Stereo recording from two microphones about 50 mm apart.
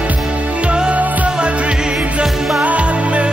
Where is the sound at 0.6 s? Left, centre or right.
Centre.